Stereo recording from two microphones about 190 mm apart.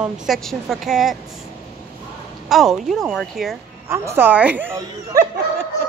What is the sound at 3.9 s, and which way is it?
Speech, 10° right (ahead or behind).